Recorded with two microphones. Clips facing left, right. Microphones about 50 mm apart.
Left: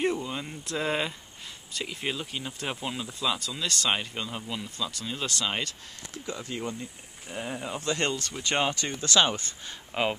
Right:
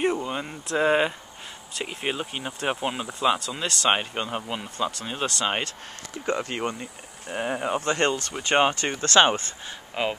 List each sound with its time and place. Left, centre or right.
0.2 s speech: right
6.2 s speech: right
9.9 s speech: centre